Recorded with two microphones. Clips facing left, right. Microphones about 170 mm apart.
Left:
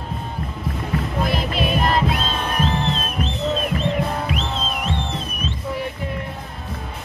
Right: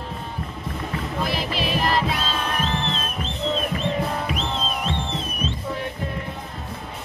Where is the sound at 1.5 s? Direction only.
50° left (ahead or behind).